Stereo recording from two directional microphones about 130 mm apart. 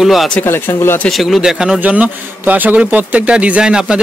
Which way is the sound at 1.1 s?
Centre (ahead or behind).